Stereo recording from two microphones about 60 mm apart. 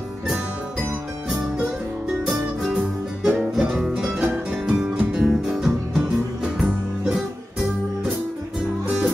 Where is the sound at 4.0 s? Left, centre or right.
Centre.